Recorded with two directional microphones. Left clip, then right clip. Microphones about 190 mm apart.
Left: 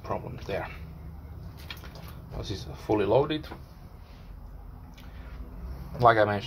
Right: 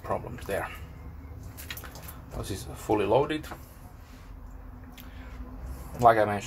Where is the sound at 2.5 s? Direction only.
5° left (ahead or behind).